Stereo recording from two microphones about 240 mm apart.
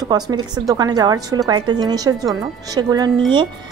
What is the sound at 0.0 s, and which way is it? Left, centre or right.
Speech, centre.